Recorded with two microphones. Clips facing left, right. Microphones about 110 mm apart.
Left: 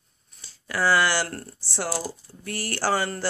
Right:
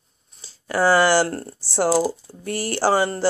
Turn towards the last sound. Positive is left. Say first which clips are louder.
# right 6 dB
turn(degrees=-25)  # may be behind; listen again after turning